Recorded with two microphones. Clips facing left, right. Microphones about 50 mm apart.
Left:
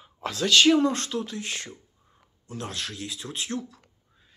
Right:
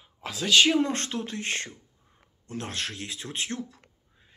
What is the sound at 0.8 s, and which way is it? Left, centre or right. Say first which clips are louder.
Speech: left 4 dB; right.